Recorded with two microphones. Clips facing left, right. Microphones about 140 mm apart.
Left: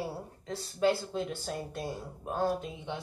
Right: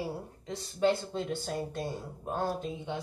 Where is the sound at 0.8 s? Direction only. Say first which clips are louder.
Even; centre (ahead or behind).